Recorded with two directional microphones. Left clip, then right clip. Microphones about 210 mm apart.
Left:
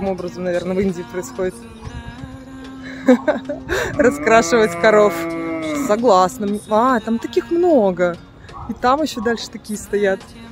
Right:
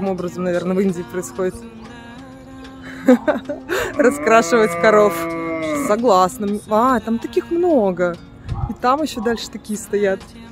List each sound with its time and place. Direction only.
0.1 s speech: 15° right (ahead or behind)
0.5 s speech: 5° right (ahead or behind)
2.9 s speech: 10° right (ahead or behind)
5.3 s livestock: 20° right (ahead or behind)
5.9 s speech: centre (ahead or behind)